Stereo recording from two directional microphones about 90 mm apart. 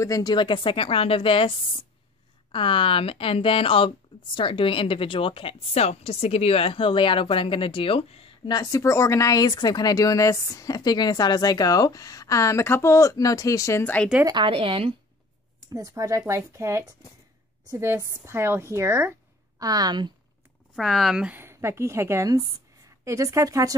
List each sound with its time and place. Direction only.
0.0 s a woman's voice: 40° left (ahead or behind)
0.3 s a woman's voice: 60° left (ahead or behind); by 3.9 s 85° left
4.4 s a woman's voice: 70° left (ahead or behind); by 8.3 s 90° left
8.5 s a woman's voice: 40° left (ahead or behind)
14.3 s speech: 75° right (ahead or behind)
15.7 s a woman's voice: 40° right (ahead or behind)
19.6 s a woman's voice: 45° right (ahead or behind)
20.7 s speech: centre (ahead or behind)
21.4 s a woman's voice: 30° right (ahead or behind)